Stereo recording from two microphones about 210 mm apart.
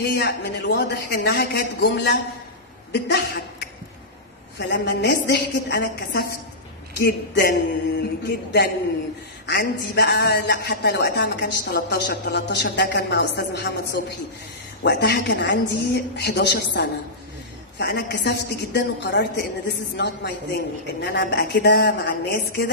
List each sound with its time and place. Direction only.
0.1 s a man's voice: 55° left (ahead or behind)
14.8 s a man's voice: 50° left (ahead or behind)